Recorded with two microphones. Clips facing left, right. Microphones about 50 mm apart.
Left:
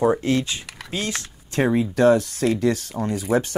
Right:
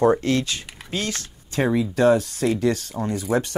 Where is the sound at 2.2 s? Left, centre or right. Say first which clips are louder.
Left 1 dB; left.